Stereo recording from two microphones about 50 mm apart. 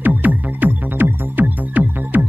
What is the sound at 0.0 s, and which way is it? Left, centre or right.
Music, right.